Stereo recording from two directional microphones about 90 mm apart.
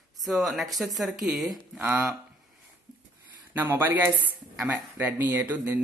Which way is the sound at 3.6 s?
20° right (ahead or behind).